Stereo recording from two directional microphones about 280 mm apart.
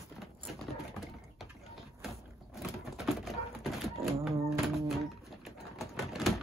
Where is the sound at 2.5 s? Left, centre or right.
Centre.